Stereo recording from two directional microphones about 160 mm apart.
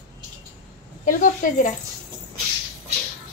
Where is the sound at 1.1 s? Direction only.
55° left (ahead or behind).